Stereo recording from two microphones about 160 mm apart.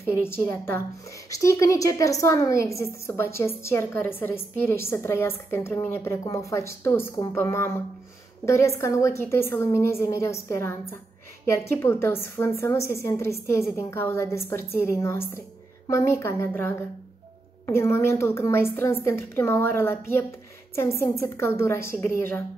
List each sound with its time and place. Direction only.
0.1 s a woman's voice: 15° left (ahead or behind)